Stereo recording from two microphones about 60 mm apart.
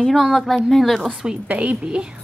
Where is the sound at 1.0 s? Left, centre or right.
Centre.